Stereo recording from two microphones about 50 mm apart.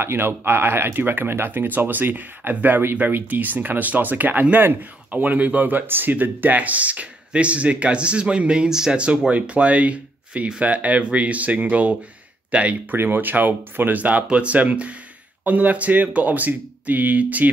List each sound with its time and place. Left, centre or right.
0.0 s speech: right
12.9 s speech: right